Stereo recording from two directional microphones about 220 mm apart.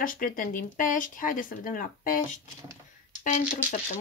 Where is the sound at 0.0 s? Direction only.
40° left (ahead or behind).